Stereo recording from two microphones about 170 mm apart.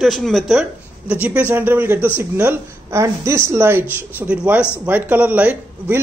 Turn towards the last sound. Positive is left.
turn(degrees=-10)  # may be behind; listen again after turning